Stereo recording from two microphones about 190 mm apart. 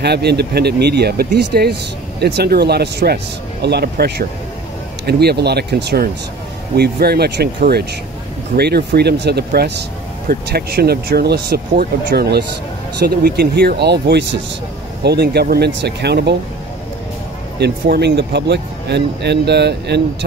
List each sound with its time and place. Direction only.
0.0 s speech: 60° right (ahead or behind)
17.6 s speech: 60° right (ahead or behind)